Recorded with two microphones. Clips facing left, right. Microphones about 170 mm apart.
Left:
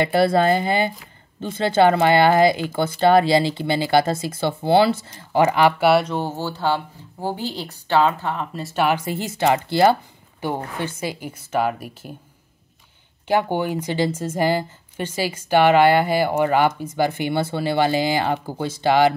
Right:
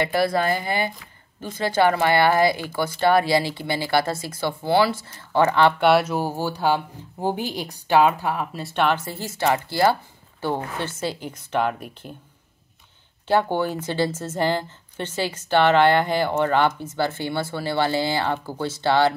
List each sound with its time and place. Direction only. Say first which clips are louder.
0.0 s a woman's voice: left 4 dB; 25° left (ahead or behind); by 12.1 s 5° left (ahead or behind)
13.3 s a woman's voice: left 1 dB; 15° left (ahead or behind)